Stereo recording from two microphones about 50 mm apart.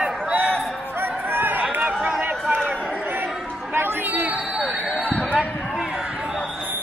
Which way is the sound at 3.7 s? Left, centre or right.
Right.